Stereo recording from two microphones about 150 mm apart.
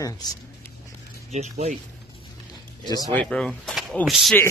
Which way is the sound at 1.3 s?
45° right (ahead or behind).